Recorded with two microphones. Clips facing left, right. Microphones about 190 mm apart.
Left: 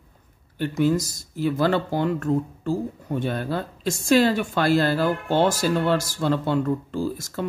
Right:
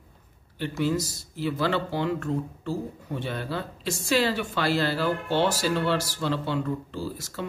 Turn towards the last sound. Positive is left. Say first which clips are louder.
# left 6 dB
turn(degrees=50)  # may be behind; listen again after turning